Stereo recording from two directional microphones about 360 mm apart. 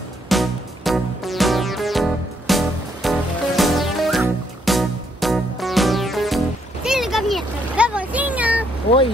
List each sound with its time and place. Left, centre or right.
0.3 s music: centre